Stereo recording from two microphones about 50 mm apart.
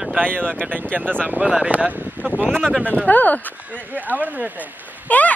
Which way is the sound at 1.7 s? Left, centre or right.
Right.